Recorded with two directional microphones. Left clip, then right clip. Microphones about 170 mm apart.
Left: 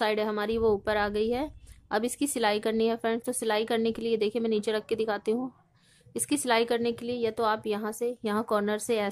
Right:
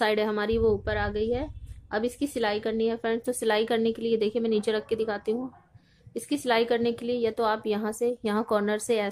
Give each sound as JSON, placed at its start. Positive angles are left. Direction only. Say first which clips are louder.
{"t": 0.0, "sound": "a woman's voice", "louder": "right 2 dB", "side_deg": 20}